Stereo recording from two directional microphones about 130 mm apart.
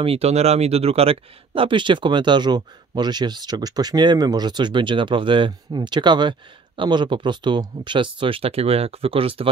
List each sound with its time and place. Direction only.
0.0 s speech: 50° right (ahead or behind)